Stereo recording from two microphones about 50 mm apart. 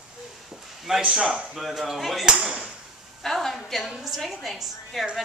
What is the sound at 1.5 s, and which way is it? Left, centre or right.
Speech, centre.